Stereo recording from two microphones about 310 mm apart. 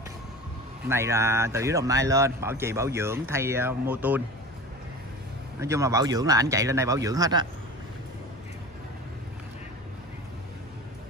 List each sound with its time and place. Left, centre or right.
0.8 s speech: centre
5.6 s speech: centre